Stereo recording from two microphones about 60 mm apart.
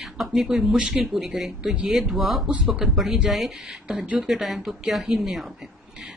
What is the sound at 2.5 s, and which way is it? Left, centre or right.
A woman's voice, centre.